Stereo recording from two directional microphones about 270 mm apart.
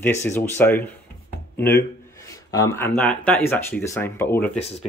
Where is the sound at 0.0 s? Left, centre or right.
Centre.